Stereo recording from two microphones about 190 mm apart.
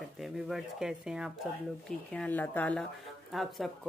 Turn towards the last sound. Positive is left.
turn(degrees=0)  # may be behind; listen again after turning